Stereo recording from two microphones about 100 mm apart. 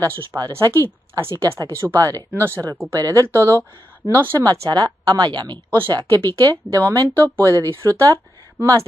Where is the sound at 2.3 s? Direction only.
20° right (ahead or behind).